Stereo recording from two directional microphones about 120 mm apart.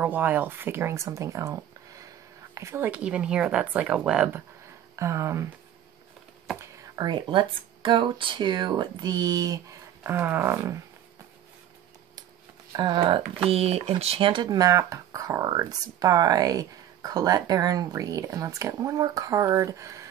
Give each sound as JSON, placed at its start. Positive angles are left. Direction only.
{"t": 0.0, "sound": "speech", "side_deg": -15}
{"t": 2.9, "sound": "a woman's voice", "side_deg": -10}
{"t": 4.9, "sound": "speech", "side_deg": -25}
{"t": 6.6, "sound": "speech", "side_deg": -30}
{"t": 12.7, "sound": "speech", "side_deg": -40}
{"t": 13.5, "sound": "speech", "side_deg": -60}